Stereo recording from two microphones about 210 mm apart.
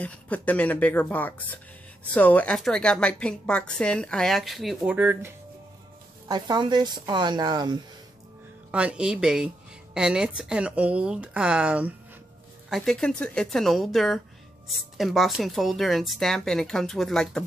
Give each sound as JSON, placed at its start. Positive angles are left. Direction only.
{"t": 0.0, "sound": "a woman's voice", "side_deg": 5}
{"t": 6.2, "sound": "a woman's voice", "side_deg": -20}
{"t": 8.7, "sound": "a woman's voice", "side_deg": -5}